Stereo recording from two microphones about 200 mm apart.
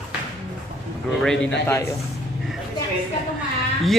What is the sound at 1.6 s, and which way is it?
Speech, 15° left (ahead or behind).